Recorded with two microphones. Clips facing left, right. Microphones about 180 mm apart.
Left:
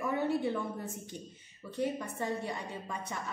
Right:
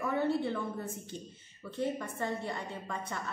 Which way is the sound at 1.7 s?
15° left (ahead or behind).